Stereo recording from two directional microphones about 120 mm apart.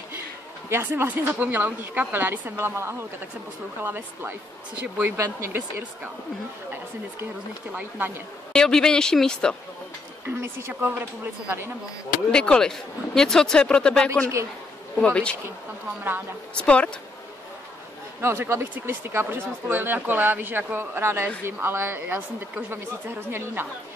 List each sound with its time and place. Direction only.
0.7 s speech: 20° right (ahead or behind)
8.5 s speech: 5° left (ahead or behind)
10.2 s a woman's voice: 25° right (ahead or behind)
12.3 s speech: 5° left (ahead or behind)
16.6 s speech: 10° left (ahead or behind)
18.2 s a woman's voice: 20° right (ahead or behind)